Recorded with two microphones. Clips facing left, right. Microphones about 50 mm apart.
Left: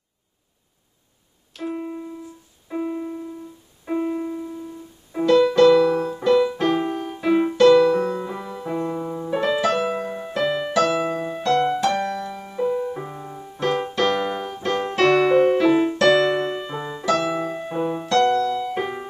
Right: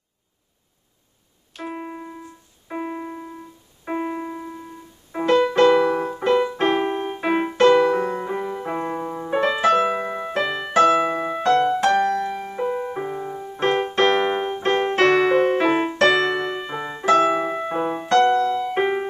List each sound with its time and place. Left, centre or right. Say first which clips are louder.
1.7 s keyboard: left 3 dB; right
5.1 s music: left 2 dB; right
9.6 s keyboard: right 3 dB; right
10.5 s music: right 5 dB; right
12.4 s keyboard: left 1 dB; right
16.5 s music: even; centre
17.0 s music: right 5 dB; right